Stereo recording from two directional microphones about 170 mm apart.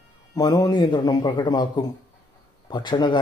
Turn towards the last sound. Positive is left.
turn(degrees=25)  # may be behind; listen again after turning